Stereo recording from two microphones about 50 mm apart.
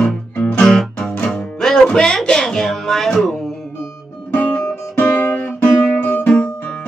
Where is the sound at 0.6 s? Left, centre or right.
Centre.